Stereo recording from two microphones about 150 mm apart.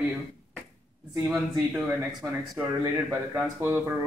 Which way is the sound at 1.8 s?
15° right (ahead or behind).